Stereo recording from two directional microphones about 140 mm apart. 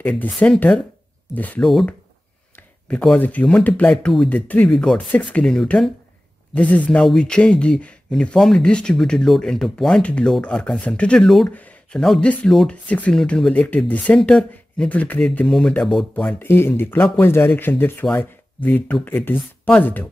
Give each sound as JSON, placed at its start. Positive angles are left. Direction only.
{"t": 0.0, "sound": "speech", "side_deg": 10}
{"t": 16.3, "sound": "speech", "side_deg": 15}